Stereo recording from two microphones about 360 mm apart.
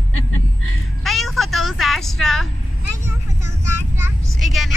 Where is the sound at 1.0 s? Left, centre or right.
Centre.